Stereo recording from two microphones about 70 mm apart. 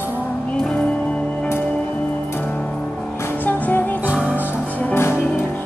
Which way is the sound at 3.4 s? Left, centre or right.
Left.